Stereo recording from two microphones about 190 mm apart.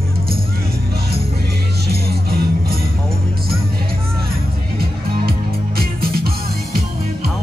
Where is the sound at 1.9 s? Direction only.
55° right (ahead or behind).